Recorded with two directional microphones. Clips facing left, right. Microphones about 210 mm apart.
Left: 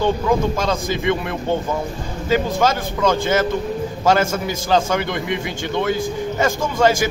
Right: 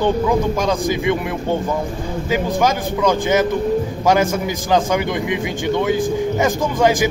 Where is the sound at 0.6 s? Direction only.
15° right (ahead or behind).